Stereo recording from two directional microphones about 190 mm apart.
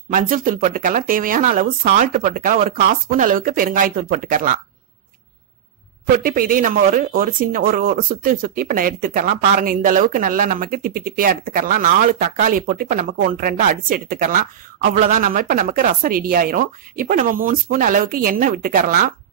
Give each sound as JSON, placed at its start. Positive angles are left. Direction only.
{"t": 0.1, "sound": "speech", "side_deg": -45}
{"t": 6.1, "sound": "speech", "side_deg": -45}